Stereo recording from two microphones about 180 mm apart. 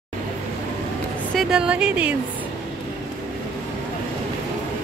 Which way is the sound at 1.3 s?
5° right (ahead or behind).